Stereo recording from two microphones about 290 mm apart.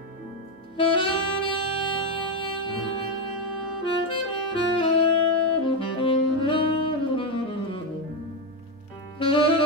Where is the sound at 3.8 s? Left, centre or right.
Centre.